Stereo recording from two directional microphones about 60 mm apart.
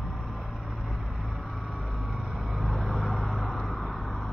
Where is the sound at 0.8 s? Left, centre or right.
Centre.